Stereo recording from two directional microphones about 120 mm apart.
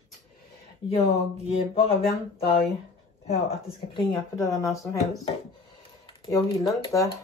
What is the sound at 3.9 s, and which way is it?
Speech, 45° left (ahead or behind).